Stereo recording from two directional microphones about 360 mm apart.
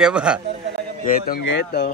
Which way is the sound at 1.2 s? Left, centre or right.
Left.